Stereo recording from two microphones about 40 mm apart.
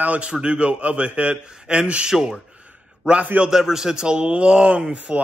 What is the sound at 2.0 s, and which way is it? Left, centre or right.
Speech, centre.